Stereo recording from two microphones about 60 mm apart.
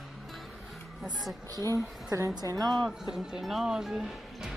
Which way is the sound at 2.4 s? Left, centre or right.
Right.